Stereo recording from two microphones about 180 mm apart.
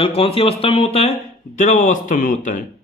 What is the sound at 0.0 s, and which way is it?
Speech, 30° left (ahead or behind).